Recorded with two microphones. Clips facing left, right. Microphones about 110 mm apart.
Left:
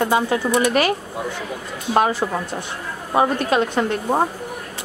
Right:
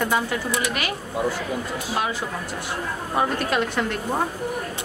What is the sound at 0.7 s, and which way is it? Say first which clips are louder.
Speech: left 9 dB; 35° left (ahead or behind).